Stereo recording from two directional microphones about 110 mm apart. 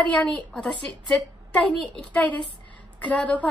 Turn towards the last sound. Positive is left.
turn(degrees=15)  # may be behind; listen again after turning